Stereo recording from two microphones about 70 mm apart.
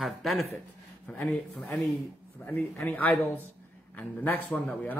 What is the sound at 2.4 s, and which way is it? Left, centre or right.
Speech, left.